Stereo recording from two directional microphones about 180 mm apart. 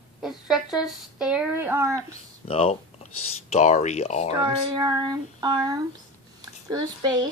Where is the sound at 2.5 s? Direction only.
35° left (ahead or behind).